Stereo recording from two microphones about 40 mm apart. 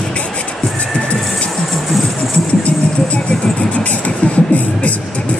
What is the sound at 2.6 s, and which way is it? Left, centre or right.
Vehicle, left.